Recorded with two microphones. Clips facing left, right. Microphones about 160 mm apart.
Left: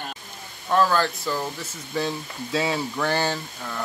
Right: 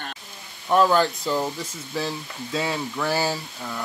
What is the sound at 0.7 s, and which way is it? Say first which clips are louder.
Speech: right 2 dB; 15° right (ahead or behind).